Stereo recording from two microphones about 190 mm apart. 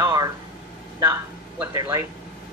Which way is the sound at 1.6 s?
15° right (ahead or behind).